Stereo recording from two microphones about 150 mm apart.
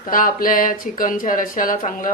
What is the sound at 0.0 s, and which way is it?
Speech, 65° left (ahead or behind).